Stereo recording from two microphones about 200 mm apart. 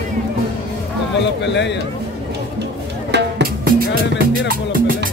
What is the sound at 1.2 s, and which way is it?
Speech, 60° left (ahead or behind).